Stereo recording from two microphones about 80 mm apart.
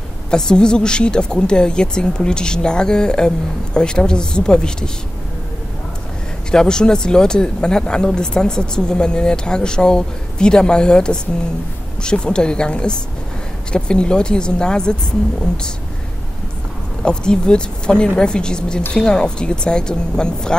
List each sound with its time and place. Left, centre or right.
0.3 s speech: centre
6.5 s speech: centre
17.0 s speech: centre